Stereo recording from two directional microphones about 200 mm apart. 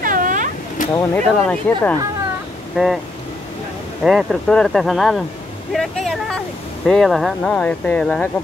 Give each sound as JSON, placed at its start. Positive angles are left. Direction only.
{"t": 0.0, "sound": "a sound", "side_deg": -40}
{"t": 0.9, "sound": "speech", "side_deg": 10}
{"t": 4.0, "sound": "speech", "side_deg": 0}